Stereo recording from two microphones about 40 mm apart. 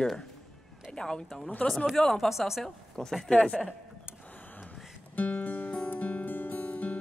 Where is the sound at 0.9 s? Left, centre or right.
Centre.